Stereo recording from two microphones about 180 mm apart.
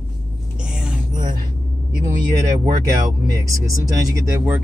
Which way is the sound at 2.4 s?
15° right (ahead or behind).